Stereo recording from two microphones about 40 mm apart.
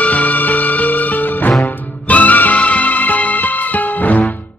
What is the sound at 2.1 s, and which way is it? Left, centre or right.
Music, left.